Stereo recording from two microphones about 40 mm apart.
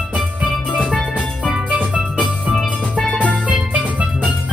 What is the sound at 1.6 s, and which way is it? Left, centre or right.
Music, right.